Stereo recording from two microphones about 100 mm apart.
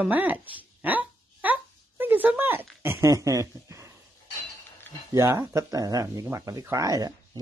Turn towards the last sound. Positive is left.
turn(degrees=-35)  # may be behind; listen again after turning